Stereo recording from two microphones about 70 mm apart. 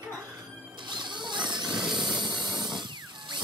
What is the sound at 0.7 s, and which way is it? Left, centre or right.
Zipper, right.